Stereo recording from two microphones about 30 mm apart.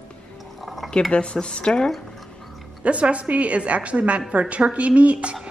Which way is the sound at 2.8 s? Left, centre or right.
Right.